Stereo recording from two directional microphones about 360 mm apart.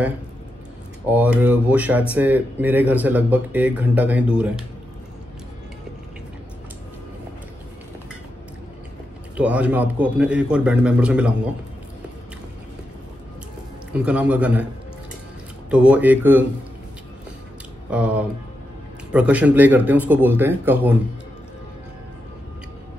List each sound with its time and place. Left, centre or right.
1.0 s speech: centre
9.4 s speech: centre
13.9 s speech: centre
15.7 s speech: centre
17.8 s speech: centre